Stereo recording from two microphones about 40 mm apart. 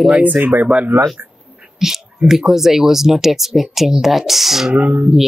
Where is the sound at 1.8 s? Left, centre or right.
Centre.